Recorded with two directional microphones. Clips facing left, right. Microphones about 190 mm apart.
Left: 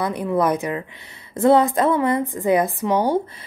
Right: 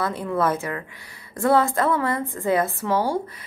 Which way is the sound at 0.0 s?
15° left (ahead or behind).